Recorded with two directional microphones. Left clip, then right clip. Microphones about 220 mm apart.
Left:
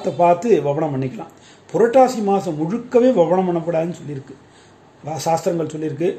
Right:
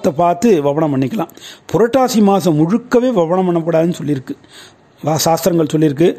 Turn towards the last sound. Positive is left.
turn(degrees=-50)  # may be behind; listen again after turning